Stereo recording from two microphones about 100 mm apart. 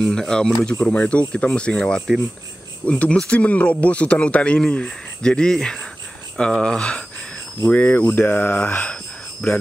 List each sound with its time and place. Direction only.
0.0 s speech: 5° left (ahead or behind)